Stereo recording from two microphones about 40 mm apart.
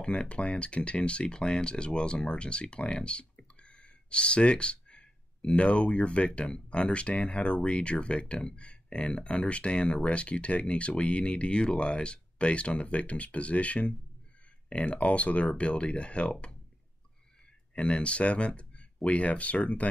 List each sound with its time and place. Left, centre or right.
0.0 s speech: left
17.7 s speech: left